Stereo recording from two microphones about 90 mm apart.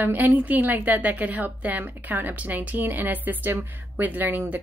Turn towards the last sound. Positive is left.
turn(degrees=-20)  # may be behind; listen again after turning